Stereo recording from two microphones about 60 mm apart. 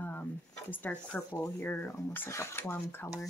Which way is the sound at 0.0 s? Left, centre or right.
Left.